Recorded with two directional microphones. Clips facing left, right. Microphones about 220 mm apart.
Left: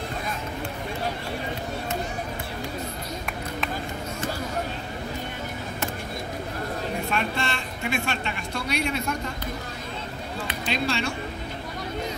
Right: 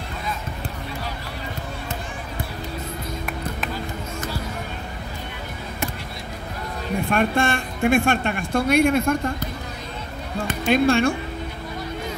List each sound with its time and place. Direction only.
7.1 s a woman's voice: 50° right (ahead or behind)
10.4 s speech: 45° right (ahead or behind)